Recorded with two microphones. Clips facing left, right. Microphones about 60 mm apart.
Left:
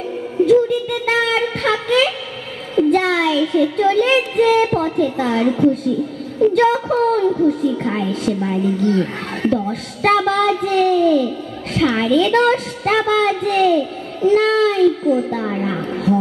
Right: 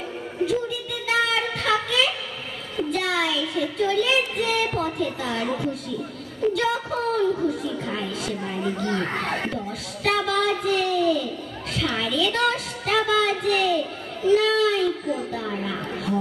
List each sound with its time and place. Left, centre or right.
0.5 s a sound: left
2.9 s child singing: left
6.5 s speech: left